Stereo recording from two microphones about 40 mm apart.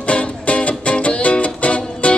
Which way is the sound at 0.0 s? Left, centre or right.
Left.